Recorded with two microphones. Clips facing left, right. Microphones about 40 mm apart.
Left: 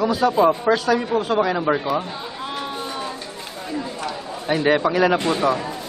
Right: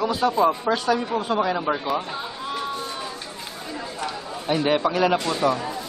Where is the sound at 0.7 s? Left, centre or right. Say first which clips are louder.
Left 3 dB; centre.